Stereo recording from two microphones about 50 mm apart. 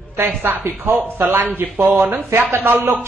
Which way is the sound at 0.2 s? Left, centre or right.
Right.